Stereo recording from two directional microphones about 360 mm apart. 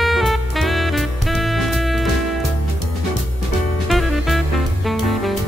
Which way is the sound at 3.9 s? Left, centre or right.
Centre.